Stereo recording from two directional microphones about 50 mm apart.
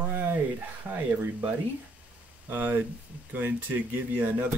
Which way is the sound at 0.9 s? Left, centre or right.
Right.